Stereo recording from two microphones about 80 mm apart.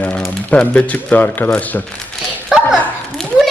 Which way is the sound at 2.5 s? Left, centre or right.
Centre.